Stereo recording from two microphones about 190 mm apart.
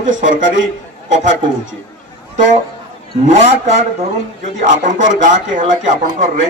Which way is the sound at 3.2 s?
35° right (ahead or behind).